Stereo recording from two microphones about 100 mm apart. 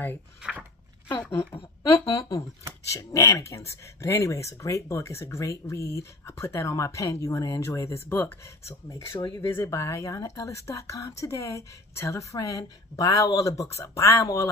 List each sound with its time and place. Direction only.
0.4 s speech: 10° right (ahead or behind)
2.0 s speech: 30° left (ahead or behind)